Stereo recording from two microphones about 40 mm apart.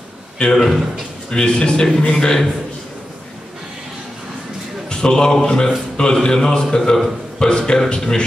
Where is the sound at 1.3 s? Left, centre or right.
Centre.